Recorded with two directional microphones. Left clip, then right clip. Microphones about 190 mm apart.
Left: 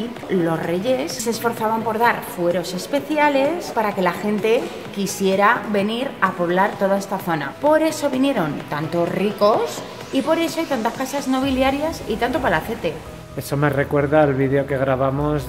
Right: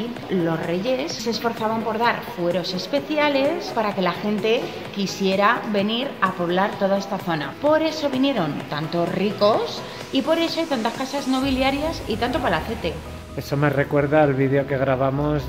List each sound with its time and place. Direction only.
0.5 s a woman's voice: 25° left (ahead or behind)
13.5 s speech: 10° left (ahead or behind)